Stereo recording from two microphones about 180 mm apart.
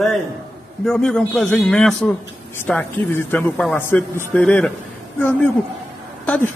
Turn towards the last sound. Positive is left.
turn(degrees=5)  # may be behind; listen again after turning